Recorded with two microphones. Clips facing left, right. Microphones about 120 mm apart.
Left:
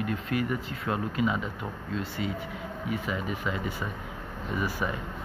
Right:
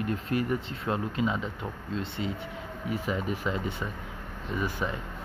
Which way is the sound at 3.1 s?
35° right (ahead or behind).